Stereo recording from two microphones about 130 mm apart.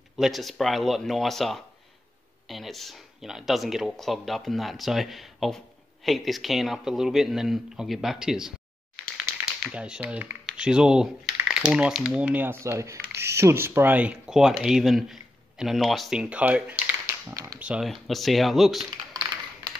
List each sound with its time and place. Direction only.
0.2 s speech: centre (ahead or behind)
9.7 s speech: 10° right (ahead or behind)
17.0 s typing: 25° right (ahead or behind)
17.6 s speech: 5° right (ahead or behind)